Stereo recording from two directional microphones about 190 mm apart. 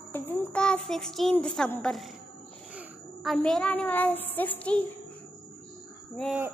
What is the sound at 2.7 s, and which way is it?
A woman's voice, centre (ahead or behind).